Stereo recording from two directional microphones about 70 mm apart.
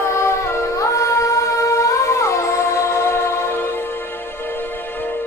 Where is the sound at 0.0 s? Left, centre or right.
Left.